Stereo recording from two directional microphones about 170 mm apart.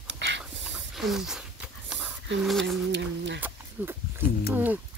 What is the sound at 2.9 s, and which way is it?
Speech, 90° right.